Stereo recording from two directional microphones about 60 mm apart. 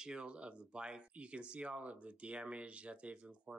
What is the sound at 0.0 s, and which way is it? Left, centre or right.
Speech, centre.